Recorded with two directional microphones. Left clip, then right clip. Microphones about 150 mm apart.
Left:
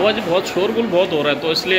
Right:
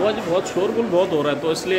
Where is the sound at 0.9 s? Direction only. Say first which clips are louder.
Left 2 dB; 25° right (ahead or behind).